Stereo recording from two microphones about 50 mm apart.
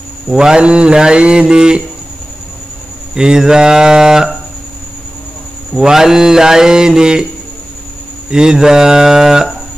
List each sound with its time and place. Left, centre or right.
0.3 s speech: centre
3.2 s speech: centre
5.8 s speech: centre
8.3 s speech: centre